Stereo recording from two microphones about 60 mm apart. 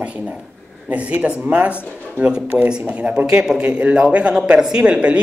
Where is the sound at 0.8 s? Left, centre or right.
Right.